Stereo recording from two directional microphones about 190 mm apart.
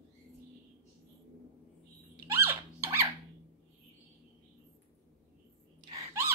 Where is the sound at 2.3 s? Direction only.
10° right (ahead or behind).